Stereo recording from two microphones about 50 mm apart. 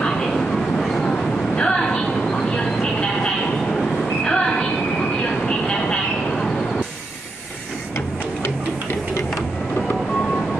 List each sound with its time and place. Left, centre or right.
0.3 s train: centre
1.6 s vehicle: centre
4.2 s train: centre
5.5 s vehicle: centre